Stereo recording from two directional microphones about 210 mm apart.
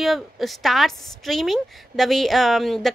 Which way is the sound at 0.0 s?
Centre (ahead or behind).